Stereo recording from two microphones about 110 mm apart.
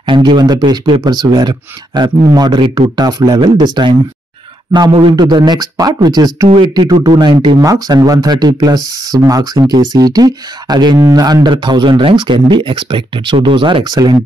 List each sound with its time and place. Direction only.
0.0 s speech: 45° right (ahead or behind)
5.1 s speech: 40° right (ahead or behind)
7.6 s speech: 35° right (ahead or behind)